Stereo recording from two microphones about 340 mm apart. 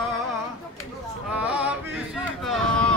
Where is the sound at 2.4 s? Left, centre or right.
Centre.